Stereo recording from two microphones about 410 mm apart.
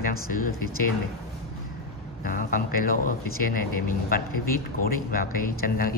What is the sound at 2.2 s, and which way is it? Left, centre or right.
Speech, centre.